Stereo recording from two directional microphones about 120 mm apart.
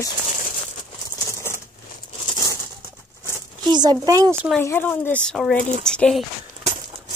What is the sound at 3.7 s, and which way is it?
Speech, 35° right (ahead or behind).